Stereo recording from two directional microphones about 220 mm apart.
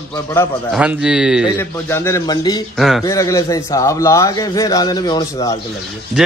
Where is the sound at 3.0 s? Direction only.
15° left (ahead or behind).